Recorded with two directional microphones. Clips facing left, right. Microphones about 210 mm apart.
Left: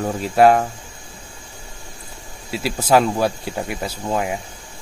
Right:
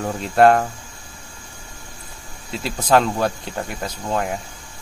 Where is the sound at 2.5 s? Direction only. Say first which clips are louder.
Left 1 dB; 5° left (ahead or behind).